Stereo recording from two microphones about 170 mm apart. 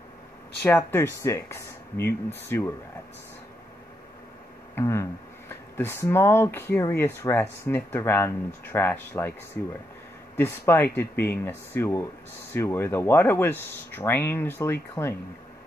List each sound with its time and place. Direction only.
0.6 s speech: 10° left (ahead or behind)
4.7 s speech: 15° left (ahead or behind)
10.3 s speech: 15° left (ahead or behind)